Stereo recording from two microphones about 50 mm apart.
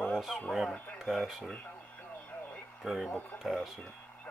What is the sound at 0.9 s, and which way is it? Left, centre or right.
Speech, centre.